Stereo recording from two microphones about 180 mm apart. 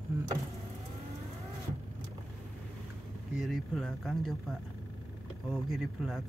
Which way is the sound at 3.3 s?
Centre (ahead or behind).